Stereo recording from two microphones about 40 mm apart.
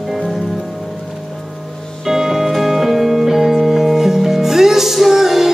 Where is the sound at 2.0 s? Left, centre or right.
Centre.